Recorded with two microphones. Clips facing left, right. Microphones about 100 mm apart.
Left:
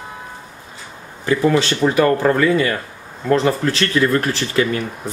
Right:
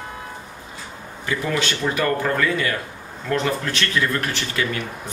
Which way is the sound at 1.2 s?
35° left (ahead or behind).